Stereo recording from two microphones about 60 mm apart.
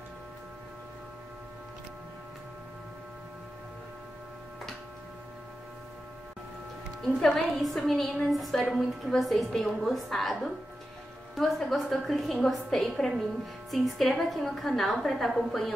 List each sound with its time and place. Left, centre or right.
7.2 s a woman's voice: centre